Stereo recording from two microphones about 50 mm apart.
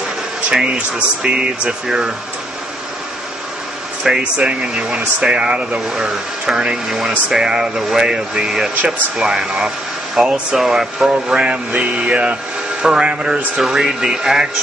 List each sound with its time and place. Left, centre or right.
0.5 s speech: centre
4.2 s speech: right
6.9 s speech: centre
10.5 s speech: centre
11.2 s speech: right